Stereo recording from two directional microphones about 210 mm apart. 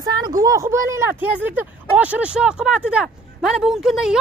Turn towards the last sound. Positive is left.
turn(degrees=0)  # may be behind; listen again after turning